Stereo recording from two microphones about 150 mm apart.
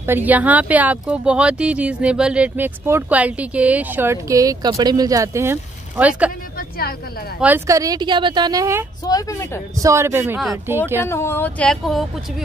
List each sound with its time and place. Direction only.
0.0 s speech: 15° right (ahead or behind)
7.3 s speech: 10° right (ahead or behind)
9.0 s speech: 20° left (ahead or behind)
9.8 s speech: 20° right (ahead or behind)
11.0 s speech: 15° left (ahead or behind)